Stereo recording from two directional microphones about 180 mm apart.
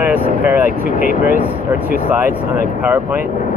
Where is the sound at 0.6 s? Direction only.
55° right (ahead or behind).